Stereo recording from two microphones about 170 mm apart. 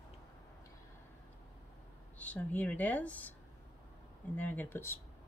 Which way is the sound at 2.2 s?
10° left (ahead or behind).